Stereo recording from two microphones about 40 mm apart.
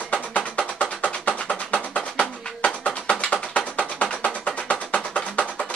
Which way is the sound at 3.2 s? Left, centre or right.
Left.